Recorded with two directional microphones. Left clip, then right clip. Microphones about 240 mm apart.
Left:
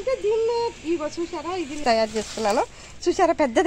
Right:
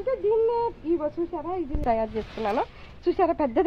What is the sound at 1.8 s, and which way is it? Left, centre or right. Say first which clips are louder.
Speech: left 5 dB; left.